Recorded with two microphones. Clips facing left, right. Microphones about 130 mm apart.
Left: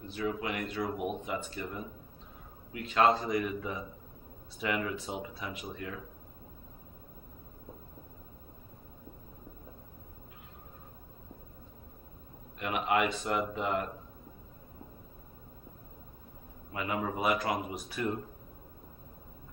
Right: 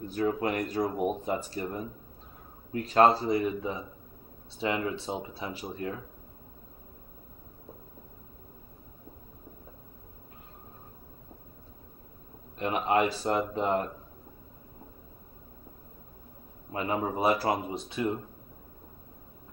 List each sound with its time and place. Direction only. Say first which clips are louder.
0.0 s speech: right 6 dB; 45° right (ahead or behind)
12.5 s speech: right 3 dB; 35° right (ahead or behind)
16.7 s speech: right 4 dB; 35° right (ahead or behind)